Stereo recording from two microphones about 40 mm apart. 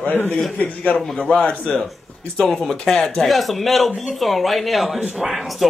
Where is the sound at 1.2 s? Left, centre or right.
Left.